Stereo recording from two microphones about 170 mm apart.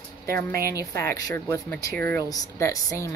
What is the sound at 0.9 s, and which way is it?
Speech, 65° right (ahead or behind).